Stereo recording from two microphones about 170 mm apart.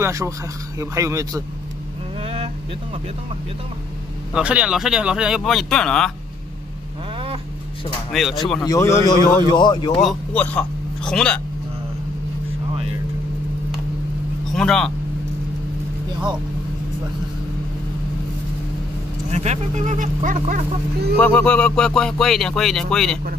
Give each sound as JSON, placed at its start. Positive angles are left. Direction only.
{"t": 0.0, "sound": "speech", "side_deg": -15}
{"t": 2.2, "sound": "vehicle", "side_deg": -30}
{"t": 4.3, "sound": "speech", "side_deg": -5}
{"t": 8.1, "sound": "speech", "side_deg": 0}
{"t": 8.6, "sound": "a man's voice", "side_deg": 20}
{"t": 10.0, "sound": "speech", "side_deg": 10}
{"t": 14.5, "sound": "speech", "side_deg": 5}
{"t": 19.3, "sound": "speech", "side_deg": -40}
{"t": 21.2, "sound": "speech", "side_deg": 10}